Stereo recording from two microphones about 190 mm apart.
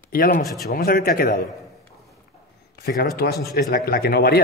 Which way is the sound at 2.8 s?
55° left (ahead or behind).